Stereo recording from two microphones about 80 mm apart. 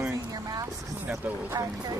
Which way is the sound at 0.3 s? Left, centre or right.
Right.